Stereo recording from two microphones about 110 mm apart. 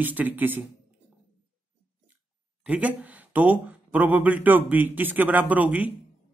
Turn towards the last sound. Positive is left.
turn(degrees=-15)  # may be behind; listen again after turning